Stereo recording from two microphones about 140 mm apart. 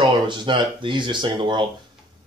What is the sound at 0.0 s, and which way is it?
A man's voice, 35° right (ahead or behind).